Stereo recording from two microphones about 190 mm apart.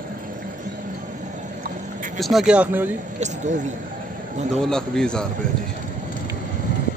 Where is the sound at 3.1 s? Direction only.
40° right (ahead or behind).